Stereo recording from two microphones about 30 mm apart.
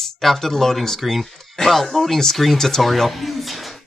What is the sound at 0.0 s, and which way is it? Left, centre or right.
Speech, centre.